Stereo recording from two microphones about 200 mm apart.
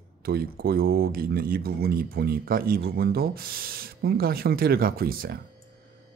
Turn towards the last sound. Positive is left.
turn(degrees=-50)  # may be behind; listen again after turning